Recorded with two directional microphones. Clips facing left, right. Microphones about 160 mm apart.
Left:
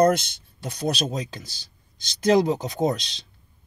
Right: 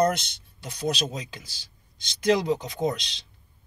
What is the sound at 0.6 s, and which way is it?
Speech, 40° left (ahead or behind).